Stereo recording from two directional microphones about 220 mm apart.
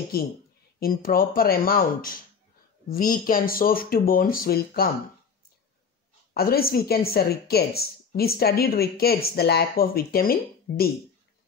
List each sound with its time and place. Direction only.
0.7 s speech: 40° left (ahead or behind)
6.3 s speech: 45° left (ahead or behind)